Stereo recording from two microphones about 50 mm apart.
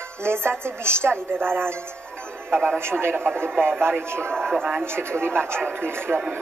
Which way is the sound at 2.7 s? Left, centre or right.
Right.